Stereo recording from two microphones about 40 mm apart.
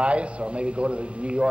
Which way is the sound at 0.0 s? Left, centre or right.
Right.